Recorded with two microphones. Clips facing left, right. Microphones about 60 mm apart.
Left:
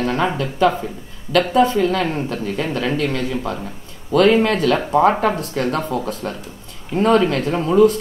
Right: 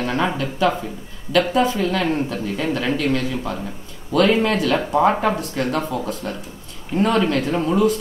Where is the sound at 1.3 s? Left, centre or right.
Left.